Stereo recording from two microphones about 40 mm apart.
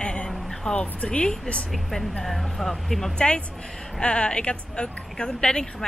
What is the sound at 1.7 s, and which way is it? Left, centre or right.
Speech, centre.